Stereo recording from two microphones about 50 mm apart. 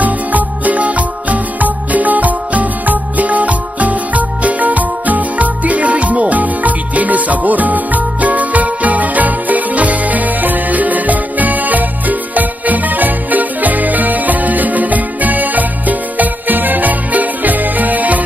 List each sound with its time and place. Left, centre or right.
0.0 s music: right